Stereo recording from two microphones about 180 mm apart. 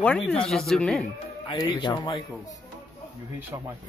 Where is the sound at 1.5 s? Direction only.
25° left (ahead or behind).